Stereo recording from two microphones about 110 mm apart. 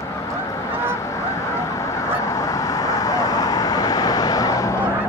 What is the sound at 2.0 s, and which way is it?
Honk, 30° left (ahead or behind).